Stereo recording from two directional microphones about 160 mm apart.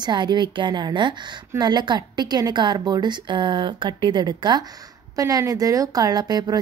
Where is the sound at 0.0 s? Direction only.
25° right (ahead or behind).